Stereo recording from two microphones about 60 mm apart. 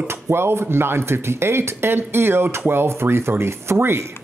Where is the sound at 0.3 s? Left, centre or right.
Right.